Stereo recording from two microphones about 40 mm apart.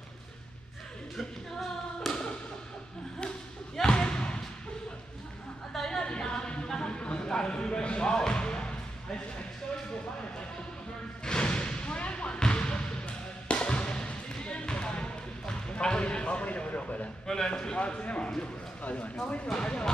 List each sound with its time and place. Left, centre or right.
1.1 s music: centre
3.7 s basketball bounce: centre
5.7 s a sound: centre
6.1 s music: left
11.2 s basketball bounce: left
17.3 s speech: centre
17.7 s a man's voice: left
19.3 s a man's voice: left